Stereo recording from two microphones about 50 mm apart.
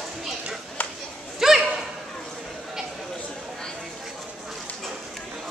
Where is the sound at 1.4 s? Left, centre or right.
Centre.